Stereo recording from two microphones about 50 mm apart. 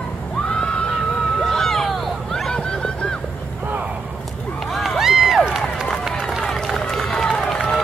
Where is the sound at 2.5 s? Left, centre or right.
Centre.